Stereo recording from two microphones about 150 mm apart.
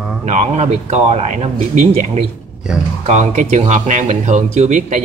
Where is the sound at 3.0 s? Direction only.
50° right (ahead or behind).